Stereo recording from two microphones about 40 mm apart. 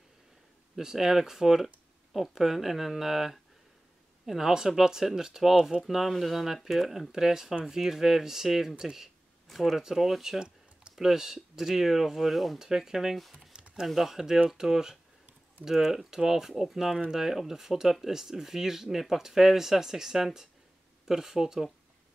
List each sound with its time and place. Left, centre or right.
0.7 s speech: centre
7.1 s speech: centre
9.5 s speech: centre
13.5 s a sound: right
13.8 s speech: centre